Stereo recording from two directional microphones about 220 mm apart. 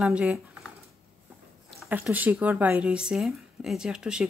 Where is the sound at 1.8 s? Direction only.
5° right (ahead or behind).